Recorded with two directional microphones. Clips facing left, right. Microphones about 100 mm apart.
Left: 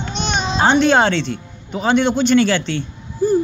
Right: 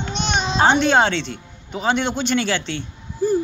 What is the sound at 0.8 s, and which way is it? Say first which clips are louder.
A man's voice: left 3 dB; 20° right (ahead or behind).